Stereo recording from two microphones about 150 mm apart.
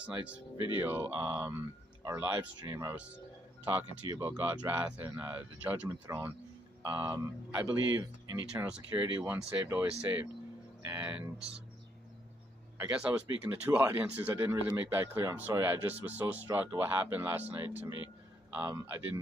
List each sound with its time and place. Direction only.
0.0 s speech: 10° right (ahead or behind)
12.7 s speech: 5° right (ahead or behind)